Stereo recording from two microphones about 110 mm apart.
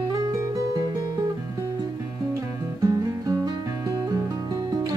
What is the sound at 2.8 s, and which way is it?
Music, 35° right (ahead or behind).